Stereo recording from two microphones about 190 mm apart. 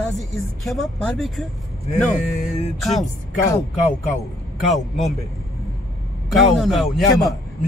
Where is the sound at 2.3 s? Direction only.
40° left (ahead or behind).